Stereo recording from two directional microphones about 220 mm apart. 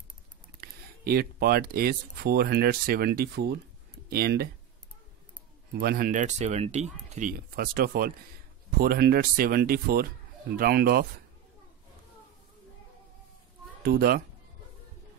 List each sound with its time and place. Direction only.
0.6 s speech: 45° right (ahead or behind)
5.7 s speech: 45° right (ahead or behind)
13.8 s speech: 45° right (ahead or behind)